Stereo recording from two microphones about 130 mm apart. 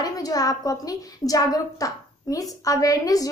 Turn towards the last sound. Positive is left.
turn(degrees=25)  # may be behind; listen again after turning